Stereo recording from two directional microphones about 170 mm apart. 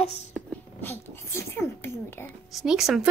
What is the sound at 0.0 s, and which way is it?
Speech, 40° left (ahead or behind).